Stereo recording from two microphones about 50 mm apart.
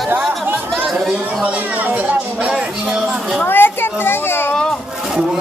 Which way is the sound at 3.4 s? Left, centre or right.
Left.